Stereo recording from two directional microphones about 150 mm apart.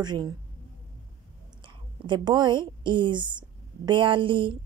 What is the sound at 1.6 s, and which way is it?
A woman's voice, 30° right (ahead or behind).